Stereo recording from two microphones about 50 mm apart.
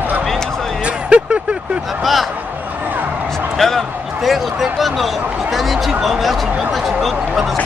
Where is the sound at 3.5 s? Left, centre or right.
Centre.